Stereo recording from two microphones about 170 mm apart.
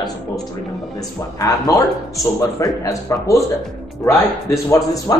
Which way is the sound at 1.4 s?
20° left (ahead or behind).